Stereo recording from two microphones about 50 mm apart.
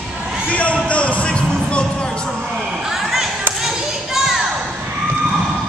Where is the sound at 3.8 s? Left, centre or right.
Centre.